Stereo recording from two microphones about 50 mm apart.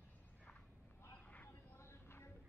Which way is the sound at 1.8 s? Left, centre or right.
Left.